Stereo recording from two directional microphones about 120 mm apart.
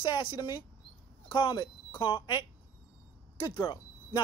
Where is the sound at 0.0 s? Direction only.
40° left (ahead or behind).